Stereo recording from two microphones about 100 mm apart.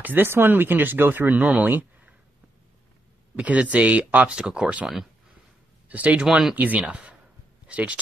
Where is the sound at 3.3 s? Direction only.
15° right (ahead or behind).